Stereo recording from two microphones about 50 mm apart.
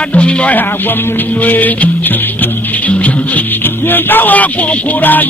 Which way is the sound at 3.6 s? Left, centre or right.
Left.